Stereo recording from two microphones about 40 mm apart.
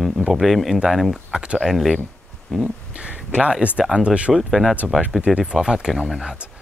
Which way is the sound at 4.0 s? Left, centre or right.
Right.